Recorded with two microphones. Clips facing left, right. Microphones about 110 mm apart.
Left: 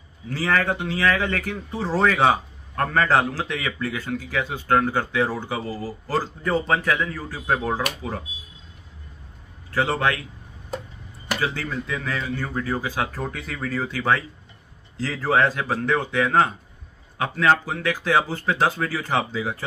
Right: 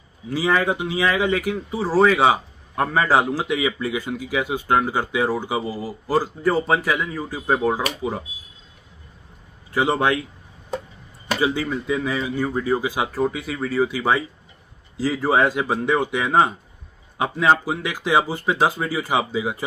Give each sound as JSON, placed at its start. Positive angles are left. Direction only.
{"t": 0.3, "sound": "speech", "side_deg": -15}
{"t": 9.7, "sound": "a man's voice", "side_deg": -15}
{"t": 11.3, "sound": "speech", "side_deg": -15}